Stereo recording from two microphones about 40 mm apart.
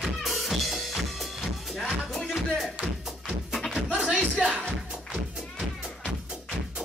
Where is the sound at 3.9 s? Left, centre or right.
Right.